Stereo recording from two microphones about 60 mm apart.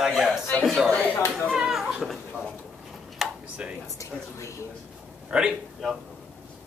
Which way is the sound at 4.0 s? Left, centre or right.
Left.